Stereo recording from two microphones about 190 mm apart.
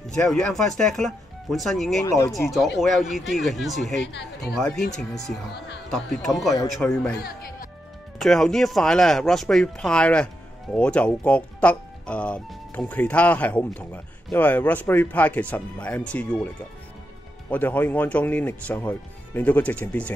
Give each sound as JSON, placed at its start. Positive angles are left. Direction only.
{"t": 0.1, "sound": "speech", "side_deg": 5}
{"t": 2.0, "sound": "speech", "side_deg": 15}
{"t": 2.8, "sound": "speech", "side_deg": 0}
{"t": 4.0, "sound": "speech", "side_deg": 65}
{"t": 4.6, "sound": "speech", "side_deg": 5}
{"t": 8.2, "sound": "speech", "side_deg": 0}
{"t": 17.5, "sound": "speech", "side_deg": 10}